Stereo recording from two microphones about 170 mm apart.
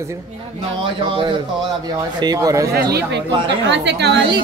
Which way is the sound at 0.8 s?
30° right (ahead or behind).